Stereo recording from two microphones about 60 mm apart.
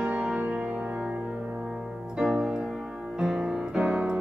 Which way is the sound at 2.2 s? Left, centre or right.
Centre.